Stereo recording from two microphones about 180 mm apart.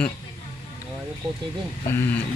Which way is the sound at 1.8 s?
10° left (ahead or behind).